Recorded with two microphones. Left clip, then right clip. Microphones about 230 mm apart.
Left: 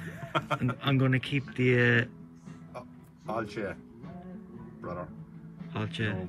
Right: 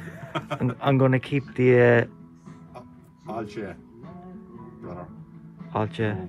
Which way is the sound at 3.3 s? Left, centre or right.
Centre.